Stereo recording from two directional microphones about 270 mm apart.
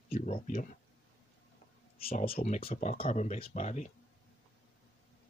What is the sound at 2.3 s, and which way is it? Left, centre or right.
Speech, left.